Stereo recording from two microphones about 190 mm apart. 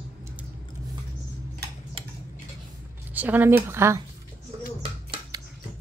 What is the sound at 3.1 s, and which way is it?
Speech, 10° right (ahead or behind).